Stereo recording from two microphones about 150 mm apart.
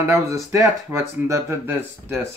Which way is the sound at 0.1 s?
20° right (ahead or behind).